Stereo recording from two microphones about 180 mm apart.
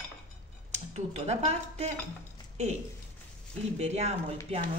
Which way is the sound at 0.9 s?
35° right (ahead or behind).